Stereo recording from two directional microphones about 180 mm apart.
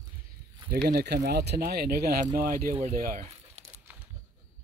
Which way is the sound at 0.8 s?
65° right (ahead or behind).